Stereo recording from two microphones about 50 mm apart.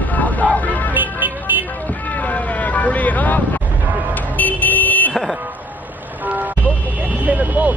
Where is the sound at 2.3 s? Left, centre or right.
Left.